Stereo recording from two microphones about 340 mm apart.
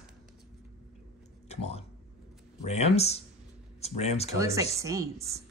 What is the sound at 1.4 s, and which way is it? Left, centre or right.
Speech, centre.